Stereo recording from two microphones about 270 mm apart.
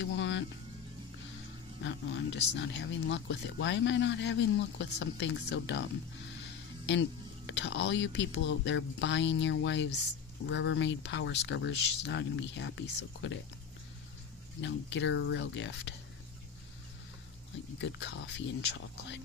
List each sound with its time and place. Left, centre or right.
0.0 s music: left
1.8 s speech: left
7.4 s speech: left
14.6 s speech: left
17.7 s speech: left